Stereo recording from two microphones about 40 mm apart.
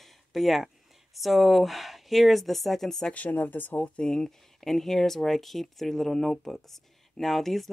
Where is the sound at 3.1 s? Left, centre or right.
Left.